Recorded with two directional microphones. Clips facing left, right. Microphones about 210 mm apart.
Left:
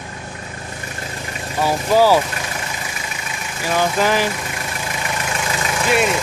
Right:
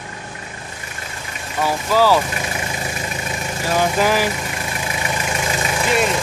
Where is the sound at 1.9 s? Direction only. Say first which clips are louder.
Left 2 dB; 15° left (ahead or behind).